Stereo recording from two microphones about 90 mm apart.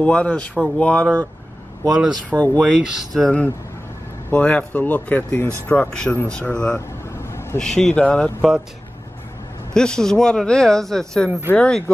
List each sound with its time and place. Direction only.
0.0 s speech: 15° left (ahead or behind)
2.2 s speech: 15° left (ahead or behind)
2.8 s speech: 5° right (ahead or behind)
3.2 s speech: 15° left (ahead or behind)
7.1 s vehicle: 30° left (ahead or behind)
7.5 s speech: 5° left (ahead or behind)
8.4 s speech: 10° right (ahead or behind)
9.8 s speech: 5° left (ahead or behind)